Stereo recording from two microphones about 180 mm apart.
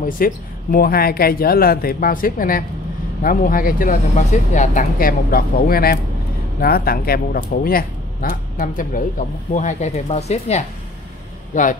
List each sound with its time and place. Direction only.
0.0 s speech: 55° left (ahead or behind)